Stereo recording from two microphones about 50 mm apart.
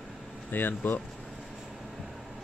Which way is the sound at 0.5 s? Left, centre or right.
Left.